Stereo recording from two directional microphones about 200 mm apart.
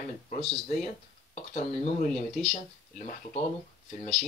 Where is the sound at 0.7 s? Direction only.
35° left (ahead or behind).